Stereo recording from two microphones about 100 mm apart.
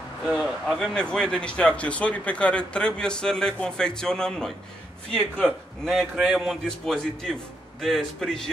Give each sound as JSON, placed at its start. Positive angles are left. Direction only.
{"t": 0.3, "sound": "a man's voice", "side_deg": -5}
{"t": 0.9, "sound": "a man's voice", "side_deg": 10}